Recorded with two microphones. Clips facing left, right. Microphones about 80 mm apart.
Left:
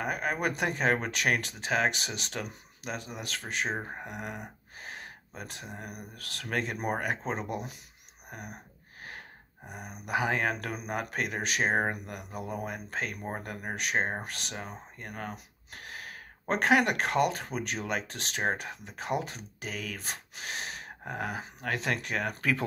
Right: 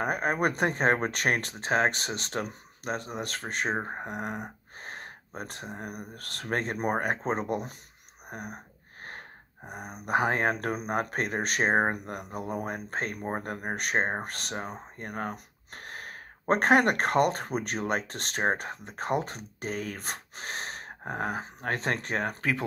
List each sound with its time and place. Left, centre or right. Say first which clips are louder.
0.0 s speech: right 4 dB; right
9.7 s speech: right 4 dB; right